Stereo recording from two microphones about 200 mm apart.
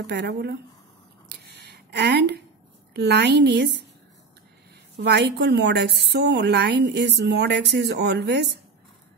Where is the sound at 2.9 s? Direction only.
55° right (ahead or behind).